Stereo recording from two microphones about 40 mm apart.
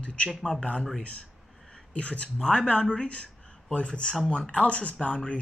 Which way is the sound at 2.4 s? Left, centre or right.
Left.